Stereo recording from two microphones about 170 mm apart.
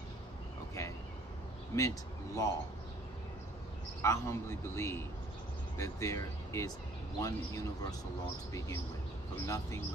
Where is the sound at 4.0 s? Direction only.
15° left (ahead or behind).